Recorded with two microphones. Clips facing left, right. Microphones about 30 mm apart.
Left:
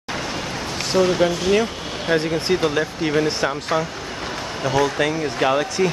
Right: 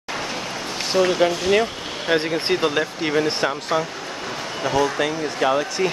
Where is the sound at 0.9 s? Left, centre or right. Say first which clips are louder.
Left 1 dB; centre.